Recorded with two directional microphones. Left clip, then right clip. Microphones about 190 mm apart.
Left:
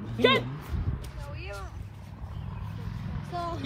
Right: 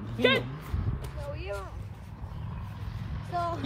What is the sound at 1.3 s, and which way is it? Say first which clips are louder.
Vehicle: right 4 dB; 50° right (ahead or behind).